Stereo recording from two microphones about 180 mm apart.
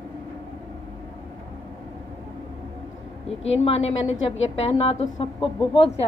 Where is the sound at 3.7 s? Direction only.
35° left (ahead or behind).